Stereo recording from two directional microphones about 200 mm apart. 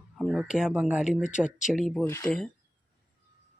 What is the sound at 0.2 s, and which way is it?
Speech, 5° right (ahead or behind).